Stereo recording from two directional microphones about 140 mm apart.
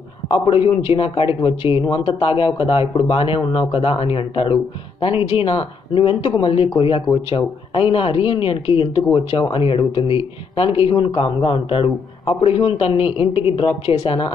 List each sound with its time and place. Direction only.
0.3 s speech: 40° left (ahead or behind)